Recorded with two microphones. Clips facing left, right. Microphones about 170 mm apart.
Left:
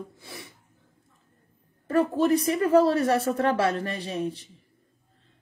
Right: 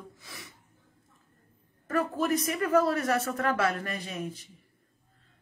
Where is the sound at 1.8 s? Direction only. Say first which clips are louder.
Left 6 dB; 30° left (ahead or behind).